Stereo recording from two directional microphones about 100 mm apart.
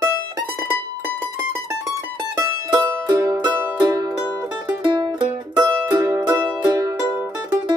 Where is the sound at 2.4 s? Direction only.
40° right (ahead or behind).